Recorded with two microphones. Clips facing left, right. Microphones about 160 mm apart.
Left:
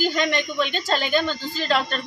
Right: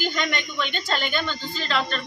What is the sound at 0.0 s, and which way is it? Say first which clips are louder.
Speech: left 5 dB; 40° left (ahead or behind).